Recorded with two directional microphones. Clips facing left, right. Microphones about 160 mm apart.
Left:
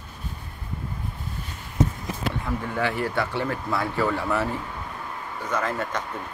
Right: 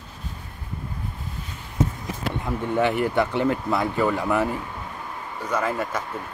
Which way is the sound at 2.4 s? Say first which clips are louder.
Right 6 dB; 20° right (ahead or behind).